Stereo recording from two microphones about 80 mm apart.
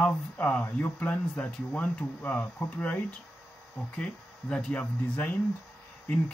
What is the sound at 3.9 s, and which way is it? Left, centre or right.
Speech, centre.